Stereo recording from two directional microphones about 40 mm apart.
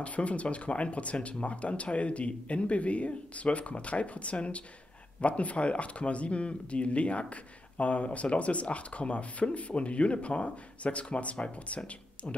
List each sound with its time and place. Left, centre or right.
0.0 s speech: left